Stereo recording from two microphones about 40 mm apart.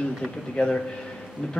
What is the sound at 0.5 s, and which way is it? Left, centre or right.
Speech, centre.